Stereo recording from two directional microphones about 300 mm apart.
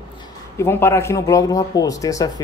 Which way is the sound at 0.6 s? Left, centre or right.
Centre.